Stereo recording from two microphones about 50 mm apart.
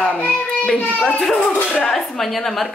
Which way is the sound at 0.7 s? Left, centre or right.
Left.